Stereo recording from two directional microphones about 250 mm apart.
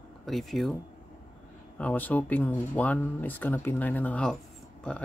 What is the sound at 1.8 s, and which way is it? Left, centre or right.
Speech, centre.